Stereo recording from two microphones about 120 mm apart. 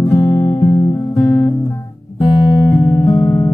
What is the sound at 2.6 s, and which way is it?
Music, 25° left (ahead or behind).